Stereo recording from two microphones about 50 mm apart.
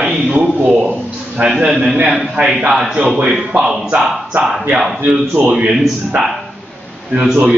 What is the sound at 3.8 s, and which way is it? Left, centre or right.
Speech, right.